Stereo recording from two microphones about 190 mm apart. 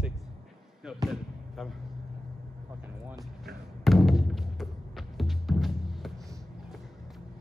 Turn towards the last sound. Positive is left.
turn(degrees=0)  # may be behind; listen again after turning